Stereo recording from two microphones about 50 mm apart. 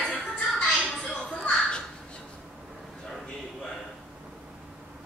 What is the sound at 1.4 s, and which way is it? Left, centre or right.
Crow, centre.